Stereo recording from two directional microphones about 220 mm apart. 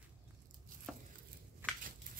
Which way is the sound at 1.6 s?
10° right (ahead or behind).